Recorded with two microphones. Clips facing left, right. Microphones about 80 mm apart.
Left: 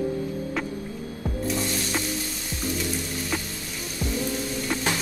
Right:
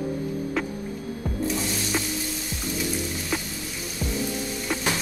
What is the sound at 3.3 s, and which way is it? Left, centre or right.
Music, centre.